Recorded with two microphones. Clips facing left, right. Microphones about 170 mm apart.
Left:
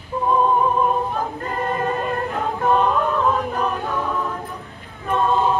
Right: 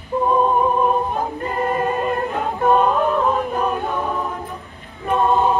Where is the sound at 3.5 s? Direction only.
20° right (ahead or behind).